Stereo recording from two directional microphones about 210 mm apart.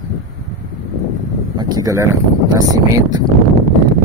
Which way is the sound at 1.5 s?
20° right (ahead or behind).